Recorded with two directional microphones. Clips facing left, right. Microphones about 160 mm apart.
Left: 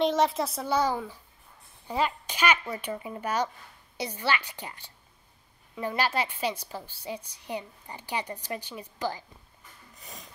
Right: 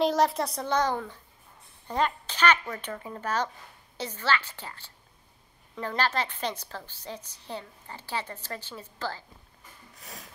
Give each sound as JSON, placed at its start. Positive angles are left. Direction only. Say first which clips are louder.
{"t": 0.0, "sound": "a woman's voice", "louder": "even", "side_deg": 0}
{"t": 9.9, "sound": "a woman's voice", "louder": "right 1 dB", "side_deg": 0}